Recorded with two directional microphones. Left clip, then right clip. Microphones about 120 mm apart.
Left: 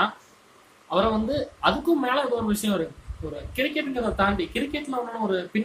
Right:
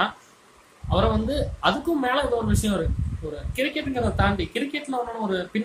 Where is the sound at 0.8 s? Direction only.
5° right (ahead or behind).